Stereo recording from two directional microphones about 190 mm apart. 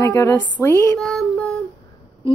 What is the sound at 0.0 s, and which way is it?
Speech, 15° left (ahead or behind).